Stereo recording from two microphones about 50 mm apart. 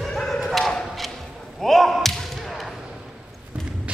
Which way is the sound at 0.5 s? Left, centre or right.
Centre.